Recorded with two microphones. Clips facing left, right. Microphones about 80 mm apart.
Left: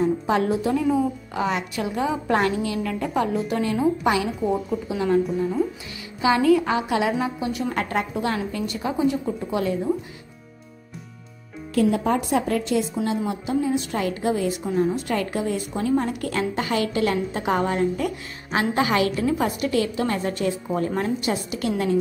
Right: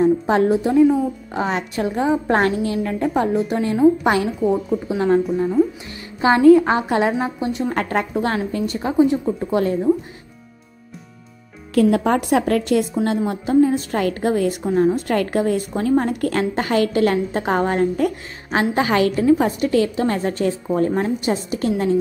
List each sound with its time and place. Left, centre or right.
0.0 s a woman's voice: right
4.4 s a woman's voice: centre
4.8 s a woman's voice: right
6.2 s a woman's voice: right
7.7 s a woman's voice: right
9.4 s a woman's voice: right
11.7 s a woman's voice: right
13.3 s a woman's voice: right
14.7 s a woman's voice: right